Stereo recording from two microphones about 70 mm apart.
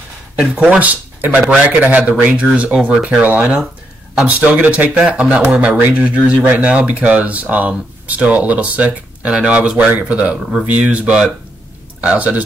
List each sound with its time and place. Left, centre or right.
0.4 s speech: centre